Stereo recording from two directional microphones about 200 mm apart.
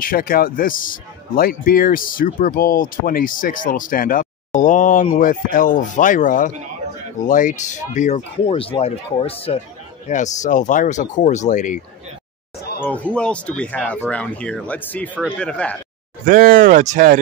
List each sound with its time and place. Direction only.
0.0 s speech: 45° left (ahead or behind)
12.8 s speech: 5° left (ahead or behind)
16.3 s speech: 45° right (ahead or behind)